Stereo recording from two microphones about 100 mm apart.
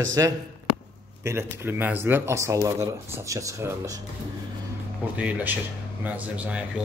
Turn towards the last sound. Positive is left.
turn(degrees=-15)  # may be behind; listen again after turning